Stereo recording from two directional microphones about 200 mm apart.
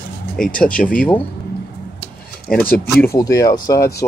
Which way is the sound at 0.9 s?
5° left (ahead or behind).